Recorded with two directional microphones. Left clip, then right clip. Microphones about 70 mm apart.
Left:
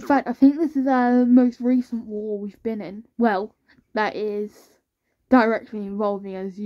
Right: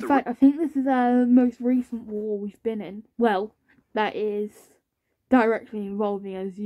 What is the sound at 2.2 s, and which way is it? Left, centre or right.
Speech, left.